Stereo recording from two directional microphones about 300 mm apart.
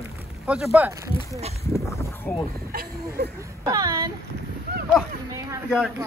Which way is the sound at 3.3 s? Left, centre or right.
Centre.